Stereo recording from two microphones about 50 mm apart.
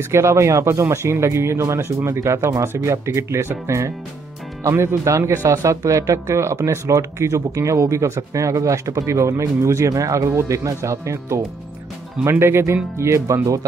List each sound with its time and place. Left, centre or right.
0.1 s speech: right
12.3 s speech: right
12.9 s speech: right